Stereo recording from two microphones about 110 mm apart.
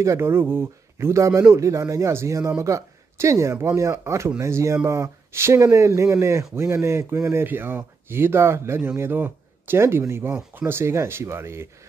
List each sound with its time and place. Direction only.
0.0 s speech: 25° right (ahead or behind)